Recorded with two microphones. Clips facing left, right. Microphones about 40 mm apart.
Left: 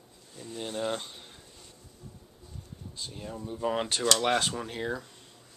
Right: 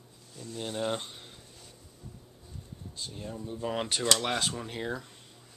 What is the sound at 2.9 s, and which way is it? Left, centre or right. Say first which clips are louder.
Speech: even; centre.